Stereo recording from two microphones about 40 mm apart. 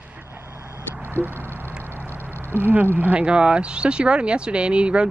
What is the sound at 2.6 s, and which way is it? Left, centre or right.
Speech, right.